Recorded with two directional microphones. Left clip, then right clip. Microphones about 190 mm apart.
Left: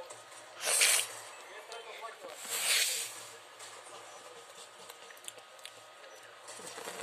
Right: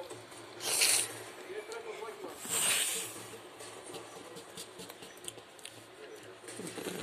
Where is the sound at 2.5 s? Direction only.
20° left (ahead or behind).